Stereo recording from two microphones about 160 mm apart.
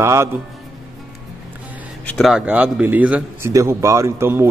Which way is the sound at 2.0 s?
Centre (ahead or behind).